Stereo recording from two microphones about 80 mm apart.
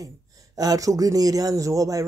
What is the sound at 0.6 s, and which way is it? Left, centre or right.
Speech, right.